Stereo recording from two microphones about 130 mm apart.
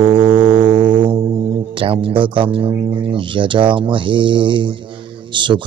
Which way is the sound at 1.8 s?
45° right (ahead or behind).